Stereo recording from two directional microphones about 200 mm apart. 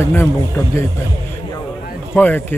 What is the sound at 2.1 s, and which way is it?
Speech, 10° left (ahead or behind).